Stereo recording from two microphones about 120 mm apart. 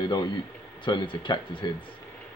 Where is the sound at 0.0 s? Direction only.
35° left (ahead or behind).